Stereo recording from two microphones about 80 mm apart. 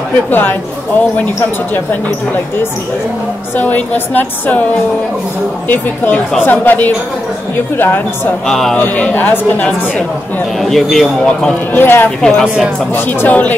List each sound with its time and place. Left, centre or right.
0.3 s a woman's voice: left
3.5 s a woman's voice: left
5.7 s a woman's voice: left
8.5 s a man's voice: centre
8.7 s a woman's voice: centre
10.6 s a man's voice: centre
11.7 s a woman's voice: left
12.2 s a man's voice: centre
12.4 s speech: centre
12.9 s a woman's voice: left